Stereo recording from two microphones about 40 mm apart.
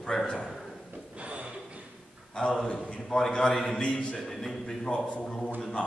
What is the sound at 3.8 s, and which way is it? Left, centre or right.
Speech, left.